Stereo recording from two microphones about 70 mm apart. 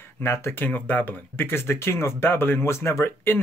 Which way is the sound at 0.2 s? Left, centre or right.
Left.